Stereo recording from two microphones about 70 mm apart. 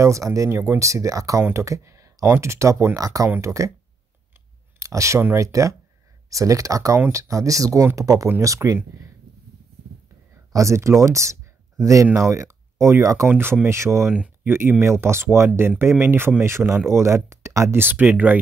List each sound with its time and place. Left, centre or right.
0.0 s speech: right
3.0 s speech: right
4.7 s a sound: right
5.4 s speech: right
10.3 s speech: right